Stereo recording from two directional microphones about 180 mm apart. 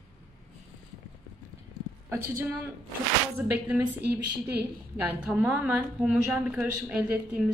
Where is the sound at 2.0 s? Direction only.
15° right (ahead or behind).